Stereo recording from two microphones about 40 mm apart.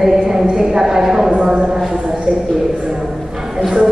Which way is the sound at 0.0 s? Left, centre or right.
Centre.